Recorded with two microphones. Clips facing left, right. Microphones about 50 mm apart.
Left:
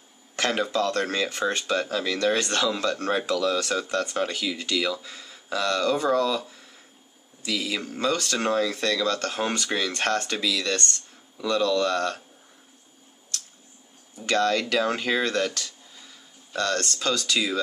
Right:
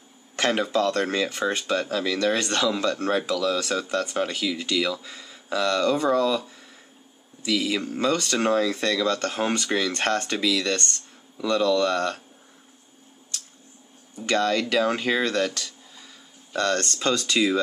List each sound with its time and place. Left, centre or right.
0.4 s speech: centre
3.1 s speech: centre
3.9 s speech: centre
14.2 s speech: centre
16.5 s speech: centre